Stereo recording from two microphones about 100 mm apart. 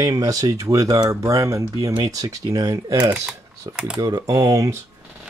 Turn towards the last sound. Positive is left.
turn(degrees=-30)  # may be behind; listen again after turning